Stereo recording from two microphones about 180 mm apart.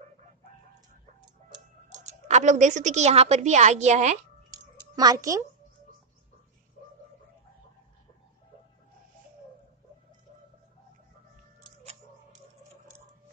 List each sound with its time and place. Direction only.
2.0 s a woman's voice: 40° right (ahead or behind)
4.9 s a child's voice: 20° right (ahead or behind)